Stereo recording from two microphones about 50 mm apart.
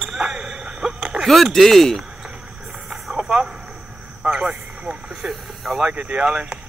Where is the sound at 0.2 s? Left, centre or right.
Centre.